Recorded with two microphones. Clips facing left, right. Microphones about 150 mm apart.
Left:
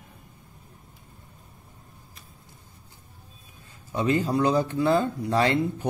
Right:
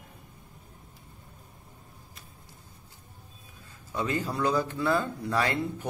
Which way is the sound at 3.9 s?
20° left (ahead or behind).